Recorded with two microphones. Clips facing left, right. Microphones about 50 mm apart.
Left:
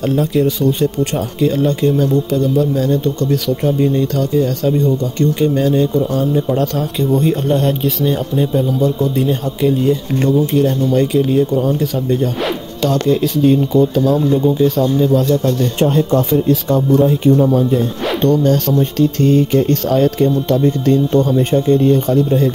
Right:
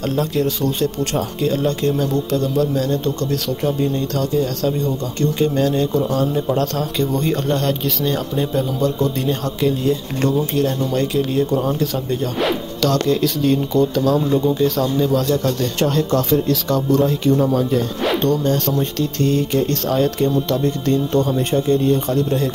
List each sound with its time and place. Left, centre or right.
0.1 s speech: centre
1.9 s speech: centre
12.8 s speech: centre
18.2 s music: left
20.8 s speech: left